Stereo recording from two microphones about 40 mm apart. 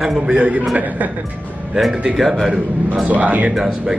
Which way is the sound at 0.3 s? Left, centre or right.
Right.